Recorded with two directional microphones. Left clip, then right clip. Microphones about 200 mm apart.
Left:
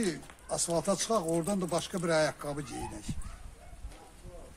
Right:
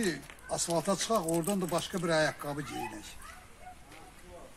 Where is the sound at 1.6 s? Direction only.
25° left (ahead or behind).